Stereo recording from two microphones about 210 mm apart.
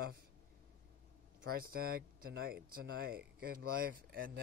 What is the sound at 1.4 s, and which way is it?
Speech, 45° right (ahead or behind).